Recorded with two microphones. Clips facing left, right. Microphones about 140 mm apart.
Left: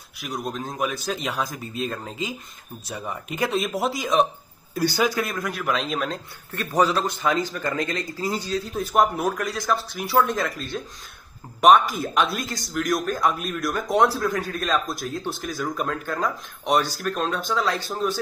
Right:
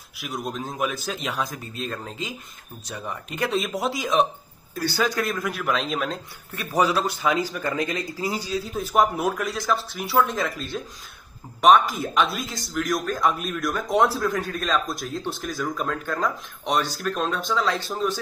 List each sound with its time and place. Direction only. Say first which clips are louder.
0.2 s a man's voice: left 1 dB; centre (ahead or behind)
4.7 s speech: left 2 dB; 15° left (ahead or behind)
5.2 s a man's voice: right 1 dB; centre (ahead or behind)